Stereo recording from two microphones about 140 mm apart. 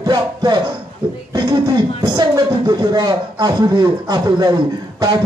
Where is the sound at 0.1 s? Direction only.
30° right (ahead or behind).